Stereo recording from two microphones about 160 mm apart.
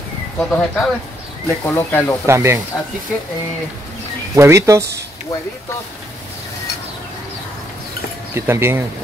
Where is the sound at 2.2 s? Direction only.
15° right (ahead or behind).